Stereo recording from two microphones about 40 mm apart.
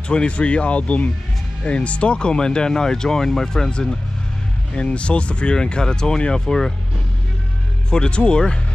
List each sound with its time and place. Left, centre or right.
0.1 s speech: left
4.7 s speech: left
7.9 s speech: left